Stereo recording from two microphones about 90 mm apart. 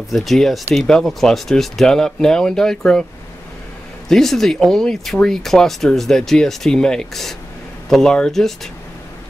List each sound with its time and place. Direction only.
0.1 s speech: centre (ahead or behind)
4.1 s speech: 5° left (ahead or behind)